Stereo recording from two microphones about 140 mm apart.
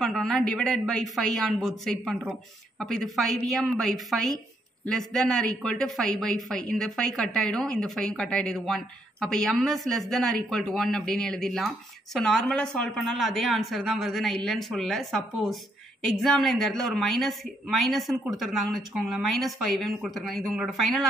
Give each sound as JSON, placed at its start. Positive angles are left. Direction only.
{"t": 0.0, "sound": "speech", "side_deg": 5}